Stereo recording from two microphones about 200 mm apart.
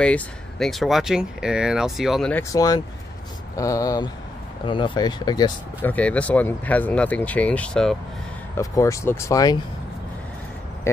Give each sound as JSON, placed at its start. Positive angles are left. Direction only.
{"t": 0.0, "sound": "speech", "side_deg": 5}
{"t": 2.5, "sound": "speech", "side_deg": 15}
{"t": 5.9, "sound": "speech", "side_deg": 5}
{"t": 8.5, "sound": "speech", "side_deg": 15}